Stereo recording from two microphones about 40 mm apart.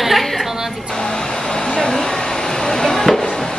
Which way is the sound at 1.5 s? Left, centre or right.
Centre.